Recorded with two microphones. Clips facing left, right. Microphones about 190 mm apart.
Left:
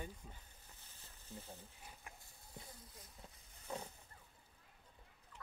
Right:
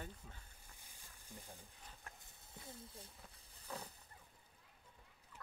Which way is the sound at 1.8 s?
10° left (ahead or behind).